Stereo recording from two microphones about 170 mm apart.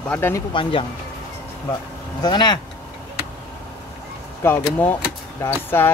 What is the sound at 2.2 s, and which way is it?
Speech, 25° left (ahead or behind).